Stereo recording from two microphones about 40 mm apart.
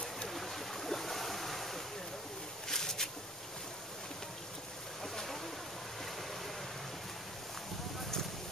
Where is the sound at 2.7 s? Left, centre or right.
Centre.